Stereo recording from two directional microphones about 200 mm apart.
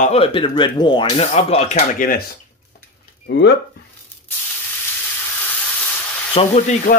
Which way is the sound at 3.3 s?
60° left (ahead or behind).